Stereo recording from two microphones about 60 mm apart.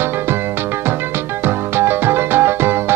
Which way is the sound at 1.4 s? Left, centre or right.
Right.